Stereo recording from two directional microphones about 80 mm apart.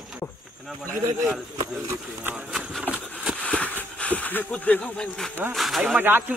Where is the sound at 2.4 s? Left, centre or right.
Centre.